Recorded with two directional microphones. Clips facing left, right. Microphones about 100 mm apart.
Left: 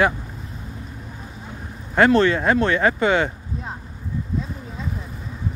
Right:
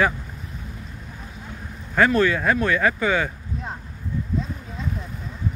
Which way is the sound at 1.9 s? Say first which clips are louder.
Left 3 dB; 25° left (ahead or behind).